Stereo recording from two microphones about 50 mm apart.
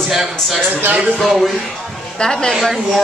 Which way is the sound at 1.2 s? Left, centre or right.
Centre.